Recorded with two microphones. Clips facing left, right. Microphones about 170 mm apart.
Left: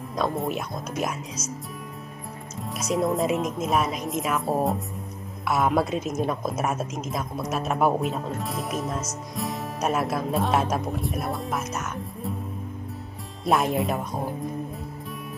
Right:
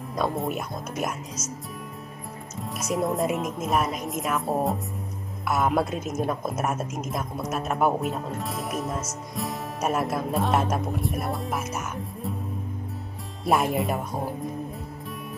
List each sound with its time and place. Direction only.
0.1 s a woman's voice: centre (ahead or behind)
2.7 s a woman's voice: centre (ahead or behind)
13.5 s a woman's voice: centre (ahead or behind)